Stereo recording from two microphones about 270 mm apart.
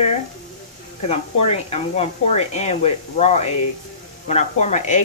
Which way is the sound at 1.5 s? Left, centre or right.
Left.